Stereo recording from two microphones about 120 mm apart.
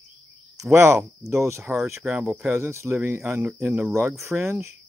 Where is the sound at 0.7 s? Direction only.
20° right (ahead or behind).